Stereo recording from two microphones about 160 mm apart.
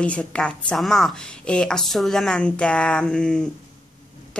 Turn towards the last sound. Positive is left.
turn(degrees=5)  # may be behind; listen again after turning